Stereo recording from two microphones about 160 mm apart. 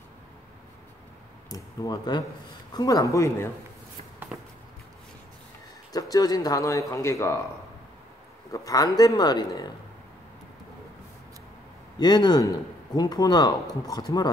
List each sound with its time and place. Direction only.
1.5 s speech: 25° left (ahead or behind)
4.3 s a sound: 5° right (ahead or behind)
5.9 s speech: 20° left (ahead or behind)
8.5 s speech: 20° left (ahead or behind)
12.0 s speech: 25° left (ahead or behind)